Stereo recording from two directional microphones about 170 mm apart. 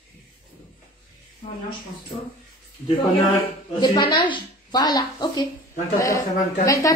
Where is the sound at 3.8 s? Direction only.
25° left (ahead or behind).